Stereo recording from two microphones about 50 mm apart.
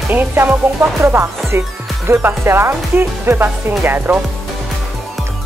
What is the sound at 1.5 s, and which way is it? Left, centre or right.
Speech, right.